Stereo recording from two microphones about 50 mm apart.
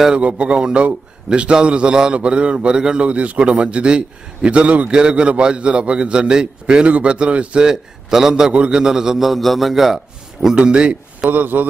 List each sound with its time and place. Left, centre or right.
0.1 s a man's voice: right
7.6 s a man's voice: centre
10.5 s speech: centre
11.2 s a man's voice: right